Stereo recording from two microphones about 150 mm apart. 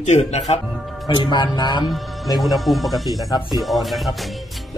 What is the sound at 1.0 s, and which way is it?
Speech, 30° left (ahead or behind).